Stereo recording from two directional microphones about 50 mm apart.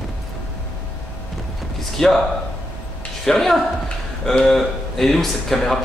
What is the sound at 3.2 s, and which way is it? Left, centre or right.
A man's voice, centre.